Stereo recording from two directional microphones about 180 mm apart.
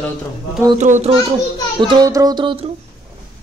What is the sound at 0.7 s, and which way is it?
Speech, 40° right (ahead or behind).